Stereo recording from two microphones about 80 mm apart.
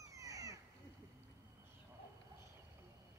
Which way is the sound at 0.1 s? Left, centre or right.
Right.